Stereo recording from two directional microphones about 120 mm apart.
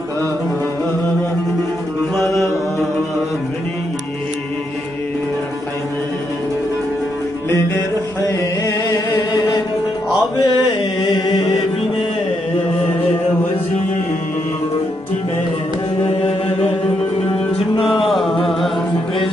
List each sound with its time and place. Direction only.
10.3 s mantra: 40° left (ahead or behind)
17.8 s music: centre (ahead or behind)